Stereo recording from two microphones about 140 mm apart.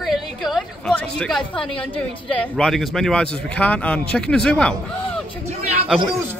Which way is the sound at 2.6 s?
5° left (ahead or behind).